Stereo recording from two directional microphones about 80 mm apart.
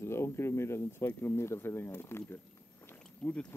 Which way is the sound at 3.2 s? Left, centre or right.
Centre.